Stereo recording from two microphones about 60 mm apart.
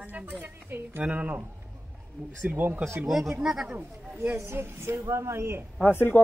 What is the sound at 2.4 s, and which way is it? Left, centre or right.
Speech, right.